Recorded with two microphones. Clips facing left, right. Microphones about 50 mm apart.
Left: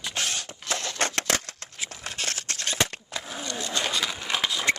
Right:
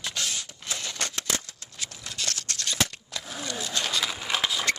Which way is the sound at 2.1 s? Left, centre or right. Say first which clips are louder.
Even; left.